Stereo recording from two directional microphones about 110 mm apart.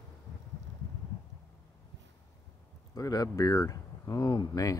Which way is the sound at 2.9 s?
35° left (ahead or behind).